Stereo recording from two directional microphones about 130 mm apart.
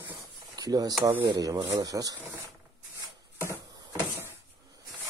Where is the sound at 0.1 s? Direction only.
30° right (ahead or behind).